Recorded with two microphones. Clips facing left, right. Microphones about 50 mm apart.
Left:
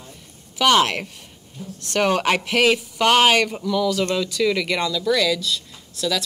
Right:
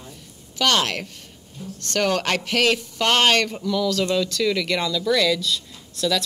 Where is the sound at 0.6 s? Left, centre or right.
Centre.